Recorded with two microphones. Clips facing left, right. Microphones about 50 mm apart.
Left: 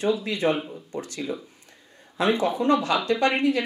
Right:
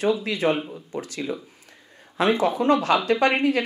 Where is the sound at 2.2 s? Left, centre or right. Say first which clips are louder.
Right 2 dB; right.